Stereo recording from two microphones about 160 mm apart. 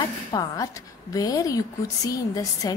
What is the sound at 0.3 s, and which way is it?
A woman's voice, 20° left (ahead or behind).